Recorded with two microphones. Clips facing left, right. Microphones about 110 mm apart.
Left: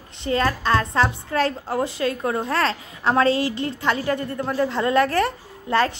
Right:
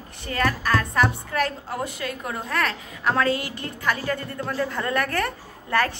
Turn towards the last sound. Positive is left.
turn(degrees=20)  # may be behind; listen again after turning